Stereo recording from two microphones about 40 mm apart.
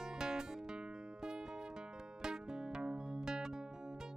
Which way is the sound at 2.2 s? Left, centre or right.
Centre.